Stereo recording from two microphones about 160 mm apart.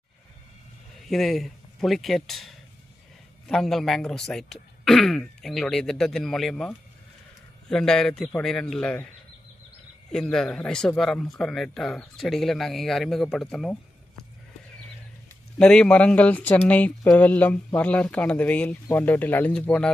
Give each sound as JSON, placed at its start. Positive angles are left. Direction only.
{"t": 1.0, "sound": "speech", "side_deg": 0}
{"t": 10.1, "sound": "speech", "side_deg": 5}
{"t": 15.6, "sound": "speech", "side_deg": 5}